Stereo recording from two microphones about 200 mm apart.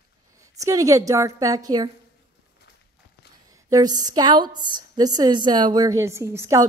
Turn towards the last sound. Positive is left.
turn(degrees=-15)  # may be behind; listen again after turning